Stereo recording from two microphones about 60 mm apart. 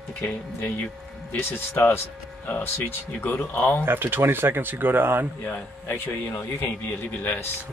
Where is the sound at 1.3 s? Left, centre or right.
Left.